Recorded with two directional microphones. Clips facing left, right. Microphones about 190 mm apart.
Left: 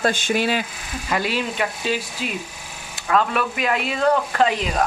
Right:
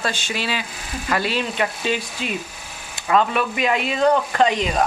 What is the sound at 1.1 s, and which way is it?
Speech, 10° left (ahead or behind).